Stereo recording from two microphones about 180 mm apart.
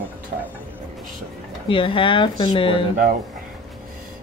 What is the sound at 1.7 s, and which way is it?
Speech, 30° left (ahead or behind).